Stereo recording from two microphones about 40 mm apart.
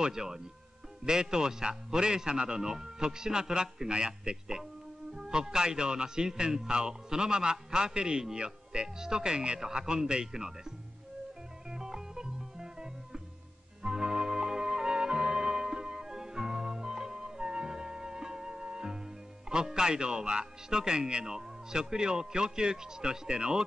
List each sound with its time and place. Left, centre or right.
0.0 s a man's voice: centre
11.7 s music: centre